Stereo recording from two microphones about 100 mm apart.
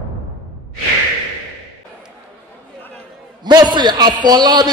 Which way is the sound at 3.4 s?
45° right (ahead or behind).